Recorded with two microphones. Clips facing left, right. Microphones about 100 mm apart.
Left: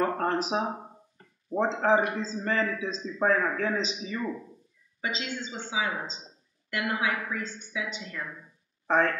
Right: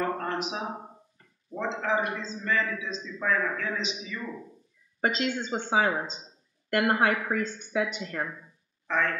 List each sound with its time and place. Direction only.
0.0 s speech: 35° left (ahead or behind)
1.1 s a sound: 40° left (ahead or behind)
1.8 s a man's voice: 35° left (ahead or behind)
5.0 s speech: 50° right (ahead or behind)
8.8 s speech: 35° left (ahead or behind)